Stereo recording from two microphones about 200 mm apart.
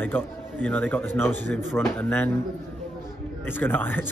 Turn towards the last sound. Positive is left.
turn(degrees=10)  # may be behind; listen again after turning